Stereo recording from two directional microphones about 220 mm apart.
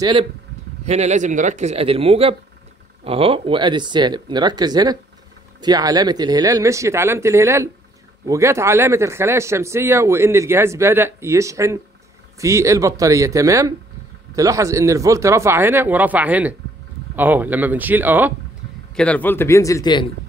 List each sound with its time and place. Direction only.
0.0 s speech: 20° right (ahead or behind)
18.9 s speech: 5° left (ahead or behind)